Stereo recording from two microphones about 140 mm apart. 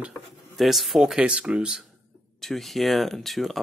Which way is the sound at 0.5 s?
Centre (ahead or behind).